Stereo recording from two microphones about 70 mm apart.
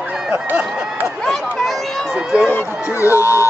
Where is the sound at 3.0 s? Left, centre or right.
Left.